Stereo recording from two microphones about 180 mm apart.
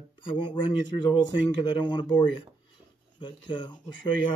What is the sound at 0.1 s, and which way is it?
Speech, 25° left (ahead or behind).